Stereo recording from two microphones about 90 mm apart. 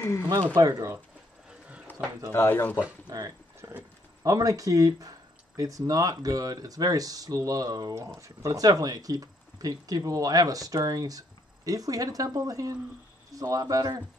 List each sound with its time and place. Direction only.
0.6 s speech: 40° right (ahead or behind)
1.9 s a sound: 20° left (ahead or behind)
2.3 s speech: 25° left (ahead or behind)
3.1 s speech: 40° right (ahead or behind)